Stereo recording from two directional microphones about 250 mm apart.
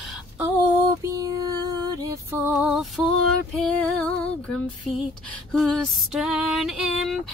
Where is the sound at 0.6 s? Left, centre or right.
Centre.